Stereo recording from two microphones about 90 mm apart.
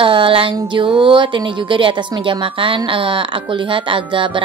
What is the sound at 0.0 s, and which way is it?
Speech, 70° right (ahead or behind).